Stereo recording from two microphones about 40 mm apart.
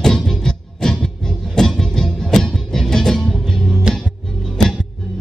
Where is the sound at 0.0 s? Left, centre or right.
Centre.